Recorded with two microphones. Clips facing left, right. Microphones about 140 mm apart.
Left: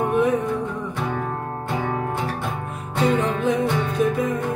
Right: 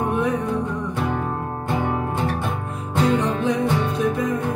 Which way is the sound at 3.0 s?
Centre (ahead or behind).